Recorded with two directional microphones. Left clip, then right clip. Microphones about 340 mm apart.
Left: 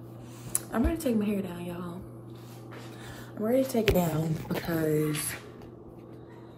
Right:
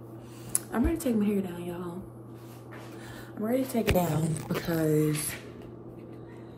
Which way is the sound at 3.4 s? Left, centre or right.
Centre.